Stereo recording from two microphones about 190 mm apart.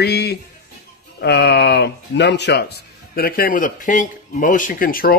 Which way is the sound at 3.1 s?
50° left (ahead or behind).